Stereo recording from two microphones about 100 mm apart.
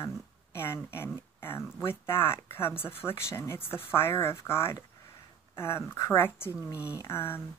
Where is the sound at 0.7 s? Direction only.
25° left (ahead or behind).